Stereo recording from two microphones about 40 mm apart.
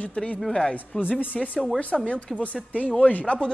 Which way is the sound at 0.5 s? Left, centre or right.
Centre.